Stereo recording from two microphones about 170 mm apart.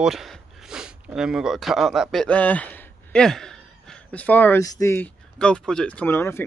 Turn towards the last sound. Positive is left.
turn(degrees=15)  # may be behind; listen again after turning